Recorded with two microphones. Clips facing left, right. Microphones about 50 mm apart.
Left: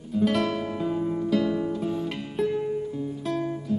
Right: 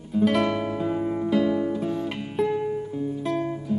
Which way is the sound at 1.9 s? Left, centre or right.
Centre.